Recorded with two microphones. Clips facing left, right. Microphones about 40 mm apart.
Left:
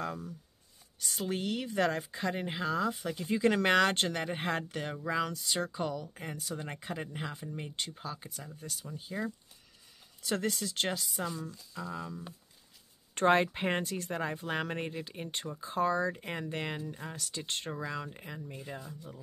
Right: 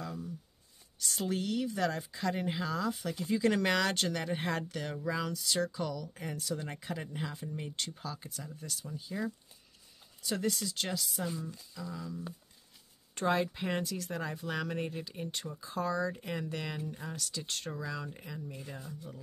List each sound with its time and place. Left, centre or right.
0.0 s shuffling cards: left
1.0 s speech: centre
1.3 s speech: left
2.3 s speech: left
6.3 s speech: centre
6.6 s speech: left
10.2 s speech: left
13.1 s speech: left
18.8 s speech: centre